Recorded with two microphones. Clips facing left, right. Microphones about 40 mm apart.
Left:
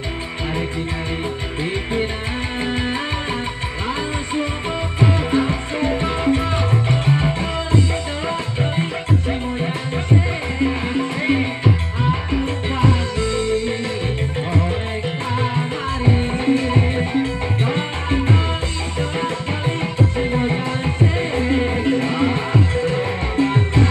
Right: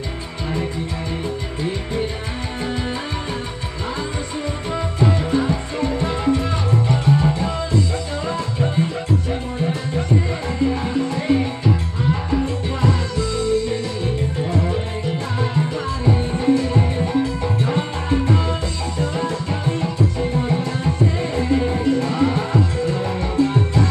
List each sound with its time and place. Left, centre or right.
4.9 s music: left
9.3 s music: left